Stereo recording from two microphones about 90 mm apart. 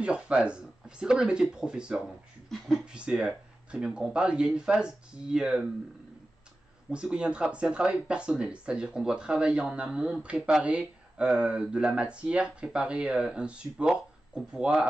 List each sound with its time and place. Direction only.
0.0 s speech: 10° right (ahead or behind)
6.9 s speech: 10° right (ahead or behind)